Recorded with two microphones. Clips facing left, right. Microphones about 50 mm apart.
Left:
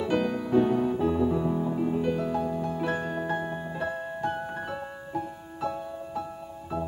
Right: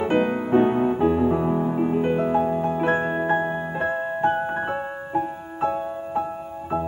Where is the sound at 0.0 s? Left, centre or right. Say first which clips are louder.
Right 6 dB; right.